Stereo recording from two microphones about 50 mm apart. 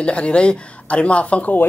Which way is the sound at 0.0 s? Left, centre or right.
Left.